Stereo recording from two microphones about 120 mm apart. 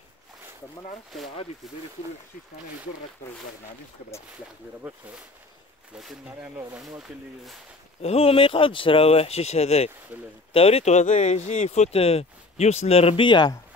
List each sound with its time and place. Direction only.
4.8 s speech: 10° right (ahead or behind)
8.0 s speech: 55° left (ahead or behind); by 13.6 s 40° left (ahead or behind)